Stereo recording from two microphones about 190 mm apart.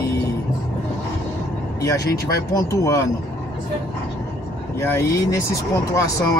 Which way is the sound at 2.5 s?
15° left (ahead or behind).